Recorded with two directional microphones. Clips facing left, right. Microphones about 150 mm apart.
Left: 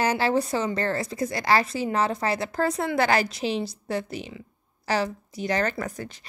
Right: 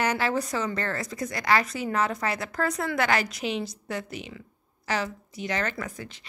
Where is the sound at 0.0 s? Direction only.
30° left (ahead or behind).